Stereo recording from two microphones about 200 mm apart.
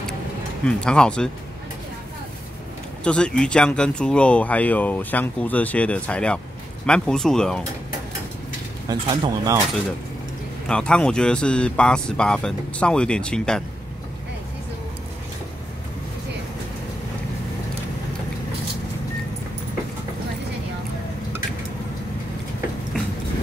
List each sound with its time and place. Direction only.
0.7 s speech: 5° left (ahead or behind)
3.0 s speech: 5° left (ahead or behind)
8.8 s speech: 20° right (ahead or behind)
10.7 s speech: 5° left (ahead or behind)